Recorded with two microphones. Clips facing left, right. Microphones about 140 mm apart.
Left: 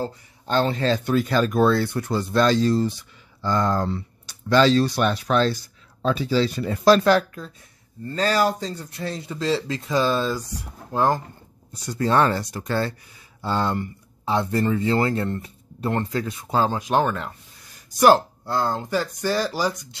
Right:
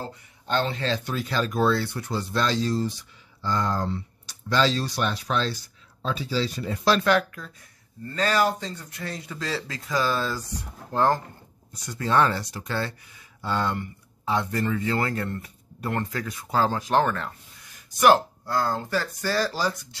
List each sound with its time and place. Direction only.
0.0 s speech: 40° left (ahead or behind); by 11.1 s 15° left (ahead or behind)
11.8 s speech: 35° left (ahead or behind)
13.4 s speech: 30° left (ahead or behind); by 17.3 s 15° left (ahead or behind)
17.9 s speech: 35° left (ahead or behind); by 20.0 s 15° left (ahead or behind)